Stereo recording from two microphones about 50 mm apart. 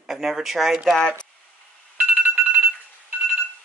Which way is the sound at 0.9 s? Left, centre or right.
Centre.